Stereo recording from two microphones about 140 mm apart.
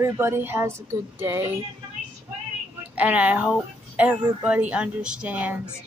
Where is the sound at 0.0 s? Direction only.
15° right (ahead or behind).